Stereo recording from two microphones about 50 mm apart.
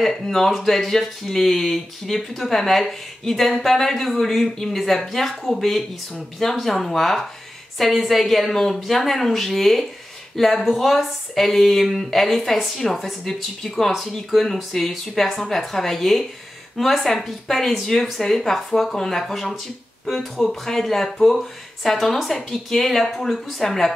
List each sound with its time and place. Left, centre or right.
0.0 s speech: centre